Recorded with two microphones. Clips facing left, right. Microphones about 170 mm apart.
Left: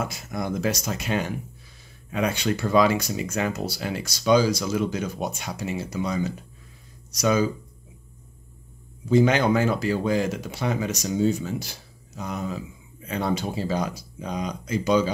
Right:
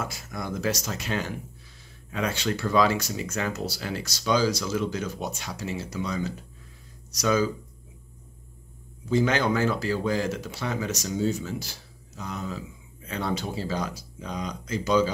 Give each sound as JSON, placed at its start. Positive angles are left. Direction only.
{"t": 0.0, "sound": "speech", "side_deg": 20}
{"t": 9.1, "sound": "speech", "side_deg": 15}